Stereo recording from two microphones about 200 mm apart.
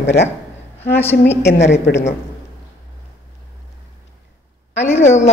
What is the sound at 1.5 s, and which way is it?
Speech, 60° left (ahead or behind).